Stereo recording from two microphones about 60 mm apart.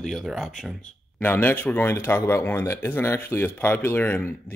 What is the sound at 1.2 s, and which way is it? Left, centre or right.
Speech, left.